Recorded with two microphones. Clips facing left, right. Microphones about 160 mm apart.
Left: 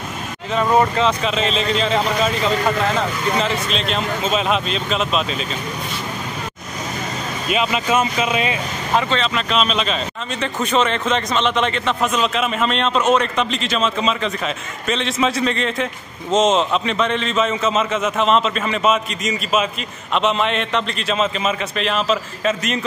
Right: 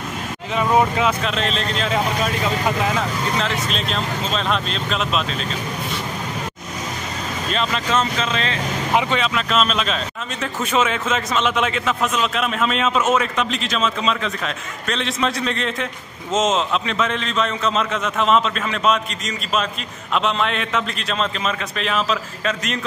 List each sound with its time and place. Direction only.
0.6 s speech: 5° right (ahead or behind)
7.5 s speech: 10° left (ahead or behind)
8.9 s speech: 10° right (ahead or behind)